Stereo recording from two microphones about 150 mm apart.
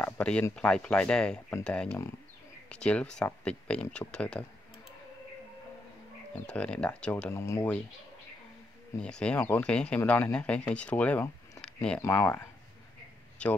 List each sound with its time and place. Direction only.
0.0 s speech: 10° left (ahead or behind)
6.4 s speech: 5° left (ahead or behind)
9.0 s speech: 5° left (ahead or behind)
11.6 s a sound: 5° left (ahead or behind)
12.0 s speech: 20° left (ahead or behind)
13.4 s speech: 10° left (ahead or behind)